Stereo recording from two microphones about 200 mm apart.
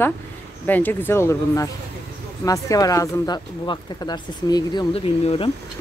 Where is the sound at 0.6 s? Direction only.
10° left (ahead or behind); by 5.5 s 30° left (ahead or behind).